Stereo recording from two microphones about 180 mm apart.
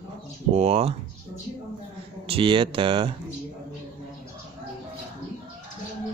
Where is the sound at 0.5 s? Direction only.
35° right (ahead or behind).